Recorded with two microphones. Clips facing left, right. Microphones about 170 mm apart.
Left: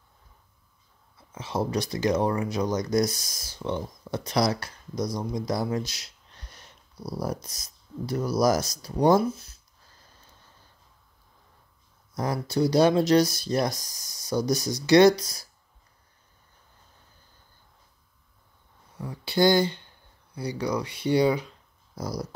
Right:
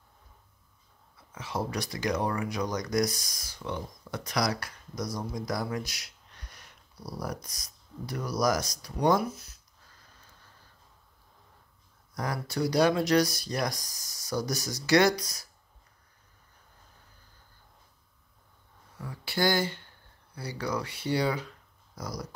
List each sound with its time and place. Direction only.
1.3 s speech: 20° left (ahead or behind)
5.1 s a sound: 25° left (ahead or behind)
7.2 s speech: 25° left (ahead or behind)
12.1 s speech: 25° left (ahead or behind)
18.9 s speech: 20° left (ahead or behind)
21.9 s speech: 30° left (ahead or behind)